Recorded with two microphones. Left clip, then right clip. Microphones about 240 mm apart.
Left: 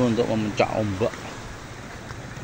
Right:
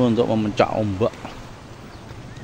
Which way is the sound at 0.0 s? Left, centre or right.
Centre.